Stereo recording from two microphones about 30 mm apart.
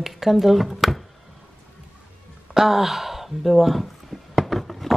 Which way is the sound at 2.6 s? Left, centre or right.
Centre.